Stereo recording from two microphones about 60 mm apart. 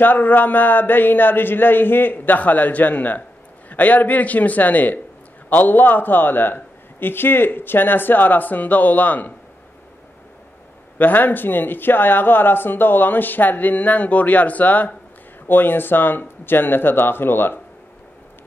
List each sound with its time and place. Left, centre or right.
0.0 s a man's voice: left
11.0 s speech: left